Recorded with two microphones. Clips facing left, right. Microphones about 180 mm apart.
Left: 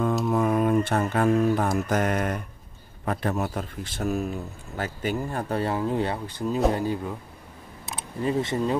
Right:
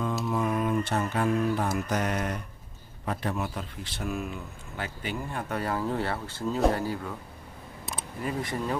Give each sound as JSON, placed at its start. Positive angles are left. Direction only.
{"t": 0.1, "sound": "speech", "side_deg": 50}
{"t": 8.2, "sound": "speech", "side_deg": 25}